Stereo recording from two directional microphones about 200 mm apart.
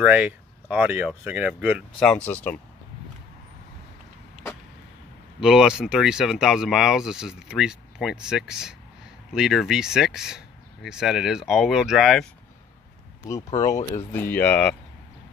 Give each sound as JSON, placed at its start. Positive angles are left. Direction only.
{"t": 0.0, "sound": "speech", "side_deg": -5}
{"t": 2.0, "sound": "speech", "side_deg": 5}
{"t": 5.4, "sound": "speech", "side_deg": -5}
{"t": 13.3, "sound": "speech", "side_deg": 15}
{"t": 13.7, "sound": "speech", "side_deg": 35}
{"t": 13.9, "sound": "speech", "side_deg": 10}